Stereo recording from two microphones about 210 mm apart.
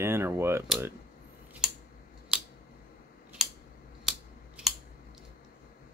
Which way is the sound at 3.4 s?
5° right (ahead or behind).